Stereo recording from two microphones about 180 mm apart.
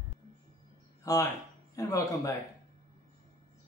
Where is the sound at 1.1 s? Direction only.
20° left (ahead or behind).